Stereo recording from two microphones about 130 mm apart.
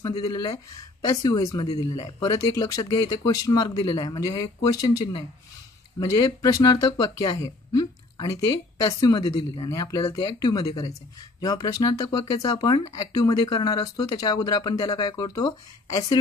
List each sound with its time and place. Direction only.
0.0 s speech: 30° left (ahead or behind)